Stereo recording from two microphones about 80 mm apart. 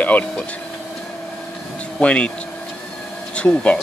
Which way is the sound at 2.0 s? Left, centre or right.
Centre.